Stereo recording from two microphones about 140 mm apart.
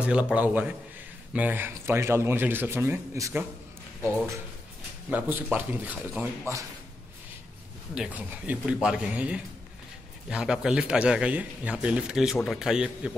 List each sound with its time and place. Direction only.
0.0 s speech: 10° right (ahead or behind)
5.1 s speech: 10° right (ahead or behind)
7.9 s a man's voice: 10° right (ahead or behind)